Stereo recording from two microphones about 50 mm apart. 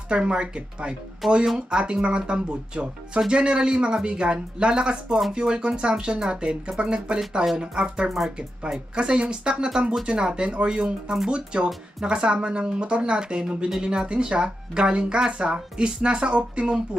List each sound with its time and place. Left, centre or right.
0.1 s speech: centre
1.2 s speech: centre
1.7 s speech: centre